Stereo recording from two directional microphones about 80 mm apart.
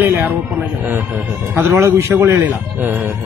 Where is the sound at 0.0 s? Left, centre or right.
Right.